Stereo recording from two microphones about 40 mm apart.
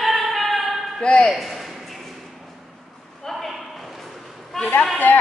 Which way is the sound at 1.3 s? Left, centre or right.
Centre.